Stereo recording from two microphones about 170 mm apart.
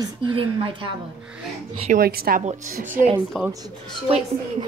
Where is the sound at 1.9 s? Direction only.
60° right (ahead or behind).